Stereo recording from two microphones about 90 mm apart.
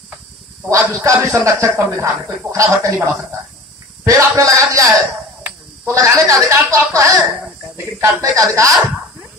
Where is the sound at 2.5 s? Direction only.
35° right (ahead or behind).